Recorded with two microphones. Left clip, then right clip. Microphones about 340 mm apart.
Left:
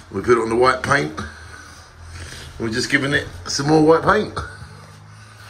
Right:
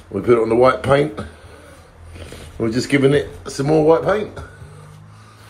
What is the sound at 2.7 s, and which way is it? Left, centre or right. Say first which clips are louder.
Speech: right 3 dB; centre.